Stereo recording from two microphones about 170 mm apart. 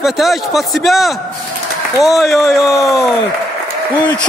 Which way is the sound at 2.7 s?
20° left (ahead or behind).